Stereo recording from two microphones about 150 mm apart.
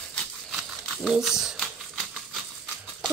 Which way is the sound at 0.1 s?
Centre (ahead or behind).